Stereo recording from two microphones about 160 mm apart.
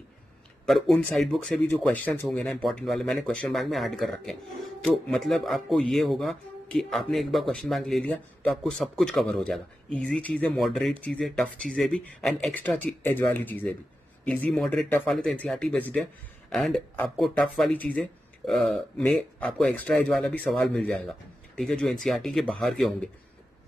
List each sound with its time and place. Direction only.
0.7 s speech: centre (ahead or behind)